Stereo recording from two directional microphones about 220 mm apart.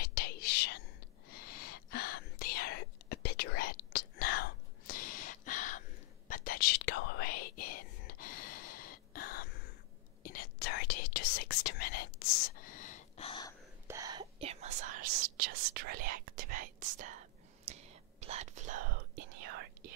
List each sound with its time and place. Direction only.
0.0 s whispering: 45° left (ahead or behind); by 13.6 s 20° left (ahead or behind)
13.8 s whispering: 15° right (ahead or behind); by 19.7 s 45° right (ahead or behind)